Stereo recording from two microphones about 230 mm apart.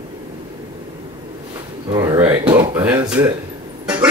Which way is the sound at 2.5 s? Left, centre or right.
Centre.